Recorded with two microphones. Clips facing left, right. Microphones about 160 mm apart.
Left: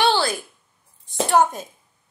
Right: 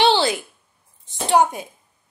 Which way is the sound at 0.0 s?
20° right (ahead or behind).